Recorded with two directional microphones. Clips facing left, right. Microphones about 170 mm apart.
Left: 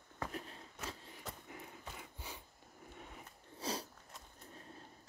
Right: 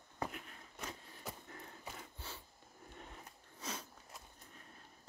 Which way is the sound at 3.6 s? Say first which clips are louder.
Left 5 dB; 35° left (ahead or behind).